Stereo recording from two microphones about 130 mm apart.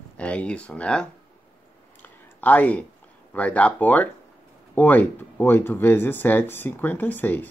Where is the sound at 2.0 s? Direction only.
15° left (ahead or behind).